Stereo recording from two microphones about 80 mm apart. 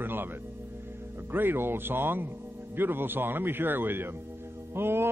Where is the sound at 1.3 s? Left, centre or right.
Right.